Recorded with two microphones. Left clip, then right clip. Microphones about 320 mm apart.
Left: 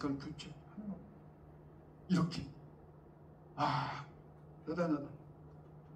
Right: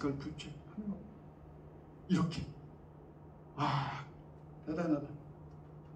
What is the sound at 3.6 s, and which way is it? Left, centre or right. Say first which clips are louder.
Gasp: even; centre.